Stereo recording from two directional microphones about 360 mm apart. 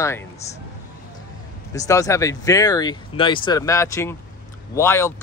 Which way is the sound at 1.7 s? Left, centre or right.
Centre.